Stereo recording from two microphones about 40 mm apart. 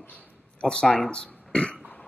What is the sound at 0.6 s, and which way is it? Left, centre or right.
Speech, centre.